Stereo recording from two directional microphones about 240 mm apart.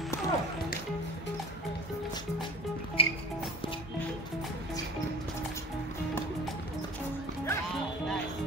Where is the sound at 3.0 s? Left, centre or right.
Left.